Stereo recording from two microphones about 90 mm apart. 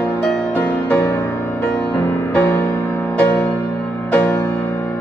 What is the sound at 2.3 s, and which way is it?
Music, 30° left (ahead or behind).